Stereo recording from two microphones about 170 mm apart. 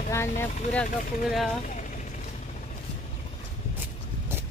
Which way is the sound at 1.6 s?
50° left (ahead or behind).